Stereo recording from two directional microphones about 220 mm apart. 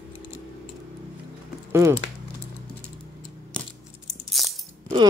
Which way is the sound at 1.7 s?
10° right (ahead or behind).